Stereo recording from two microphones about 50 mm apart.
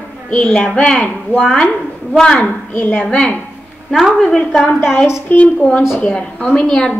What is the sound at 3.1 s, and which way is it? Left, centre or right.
A woman's voice, centre.